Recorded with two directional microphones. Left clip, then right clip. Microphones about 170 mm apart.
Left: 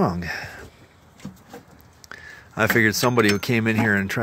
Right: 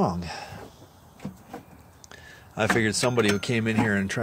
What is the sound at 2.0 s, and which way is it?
Speech, 25° left (ahead or behind).